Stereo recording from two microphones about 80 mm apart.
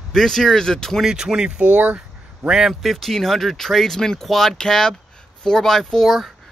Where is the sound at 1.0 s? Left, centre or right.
Centre.